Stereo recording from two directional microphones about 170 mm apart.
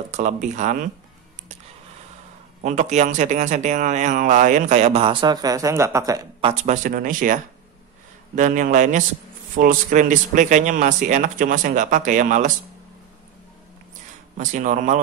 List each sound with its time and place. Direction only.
0.1 s speech: 45° right (ahead or behind)
2.6 s speech: 45° right (ahead or behind); by 6.2 s 20° right (ahead or behind)
6.4 s speech: 45° right (ahead or behind)
8.4 s speech: 45° right (ahead or behind)
14.3 s speech: 45° right (ahead or behind)